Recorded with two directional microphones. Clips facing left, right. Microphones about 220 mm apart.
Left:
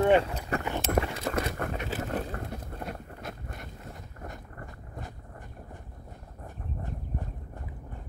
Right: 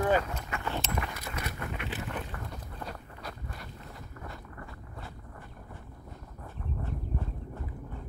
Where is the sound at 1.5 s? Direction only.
45° left (ahead or behind).